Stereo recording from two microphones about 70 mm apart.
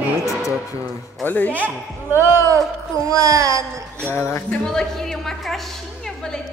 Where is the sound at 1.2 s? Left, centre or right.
Left.